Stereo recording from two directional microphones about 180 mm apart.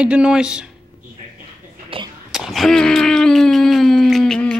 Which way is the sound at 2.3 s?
Centre (ahead or behind).